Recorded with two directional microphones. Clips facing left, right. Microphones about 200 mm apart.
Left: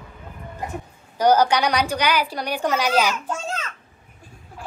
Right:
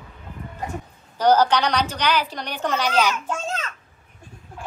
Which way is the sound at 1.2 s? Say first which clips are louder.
Even; 10° left (ahead or behind).